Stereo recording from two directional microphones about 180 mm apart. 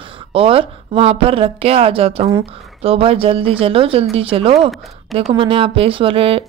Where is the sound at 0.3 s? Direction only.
30° right (ahead or behind).